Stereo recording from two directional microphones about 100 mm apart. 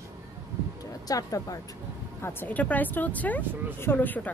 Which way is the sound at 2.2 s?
25° left (ahead or behind).